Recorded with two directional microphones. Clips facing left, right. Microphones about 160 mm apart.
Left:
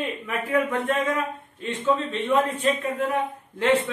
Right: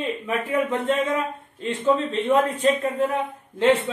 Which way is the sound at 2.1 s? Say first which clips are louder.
Right 2 dB; 35° right (ahead or behind).